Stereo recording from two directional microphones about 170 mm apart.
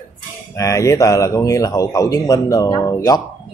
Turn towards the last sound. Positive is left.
turn(degrees=20)  # may be behind; listen again after turning